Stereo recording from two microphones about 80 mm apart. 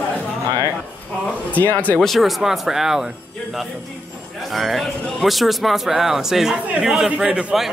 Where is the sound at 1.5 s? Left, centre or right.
Left.